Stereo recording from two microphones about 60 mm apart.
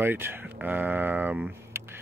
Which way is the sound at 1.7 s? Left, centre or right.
Right.